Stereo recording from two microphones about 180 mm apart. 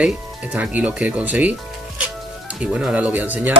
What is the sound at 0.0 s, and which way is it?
Speech, 10° right (ahead or behind).